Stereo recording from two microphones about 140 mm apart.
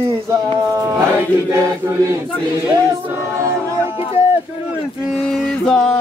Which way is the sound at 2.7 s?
25° right (ahead or behind).